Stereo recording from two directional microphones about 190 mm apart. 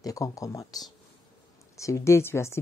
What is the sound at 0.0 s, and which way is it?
Speech, 20° left (ahead or behind).